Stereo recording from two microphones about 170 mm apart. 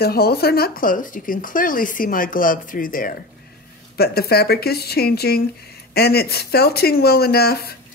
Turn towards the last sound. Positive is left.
turn(degrees=65)  # may be behind; listen again after turning